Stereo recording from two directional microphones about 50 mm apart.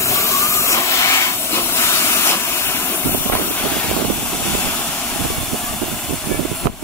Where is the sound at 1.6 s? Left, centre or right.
Left.